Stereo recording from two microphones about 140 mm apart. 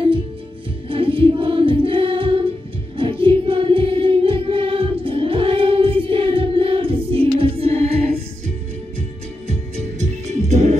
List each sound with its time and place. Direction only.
0.8 s choir: 40° right (ahead or behind)
3.0 s music: 40° right (ahead or behind)
9.5 s music: 50° right (ahead or behind)